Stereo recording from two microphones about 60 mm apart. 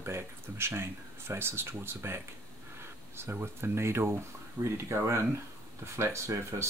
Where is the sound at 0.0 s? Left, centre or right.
Right.